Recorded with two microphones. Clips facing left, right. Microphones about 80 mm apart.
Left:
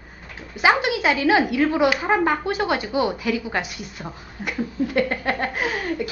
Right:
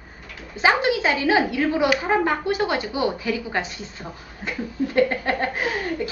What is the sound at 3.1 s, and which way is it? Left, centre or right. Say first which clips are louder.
Speech: left 2 dB; right.